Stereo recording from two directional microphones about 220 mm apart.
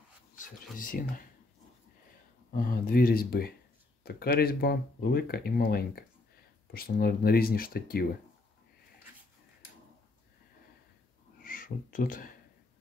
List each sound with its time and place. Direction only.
0.7 s speech: 40° left (ahead or behind)
2.5 s speech: 40° left (ahead or behind)
11.4 s speech: 40° left (ahead or behind)